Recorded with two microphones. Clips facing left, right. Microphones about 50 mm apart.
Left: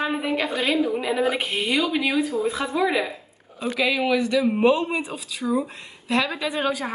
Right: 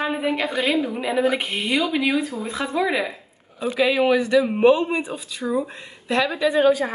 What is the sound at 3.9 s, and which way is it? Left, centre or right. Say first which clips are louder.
Speech: right 4 dB; right.